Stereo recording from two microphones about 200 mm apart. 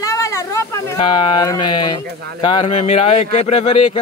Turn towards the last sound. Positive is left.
turn(degrees=30)  # may be behind; listen again after turning